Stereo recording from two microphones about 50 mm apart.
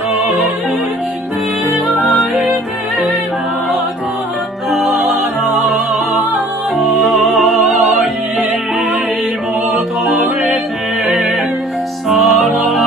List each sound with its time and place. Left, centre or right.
1.9 s music: centre
4.6 s music: centre
6.8 s music: centre
10.0 s music: centre